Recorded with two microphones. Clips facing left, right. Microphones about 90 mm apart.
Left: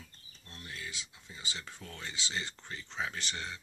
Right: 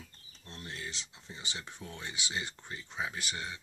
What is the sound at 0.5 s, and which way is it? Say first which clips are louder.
Speech: right 2 dB; 30° right (ahead or behind).